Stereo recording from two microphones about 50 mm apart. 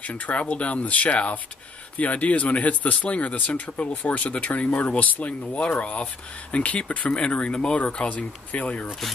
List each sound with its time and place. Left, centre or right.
0.0 s speech: left